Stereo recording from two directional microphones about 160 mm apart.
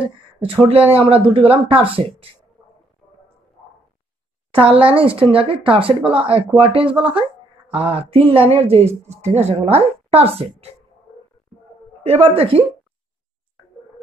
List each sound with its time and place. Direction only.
0.4 s speech: 35° right (ahead or behind)
4.5 s speech: 35° right (ahead or behind)
12.0 s speech: 35° right (ahead or behind)